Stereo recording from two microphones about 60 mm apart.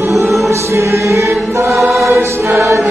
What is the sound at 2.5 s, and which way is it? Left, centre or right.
Choir, right.